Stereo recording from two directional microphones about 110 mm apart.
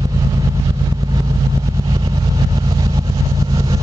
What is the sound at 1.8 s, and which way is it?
Vehicle, 40° right (ahead or behind).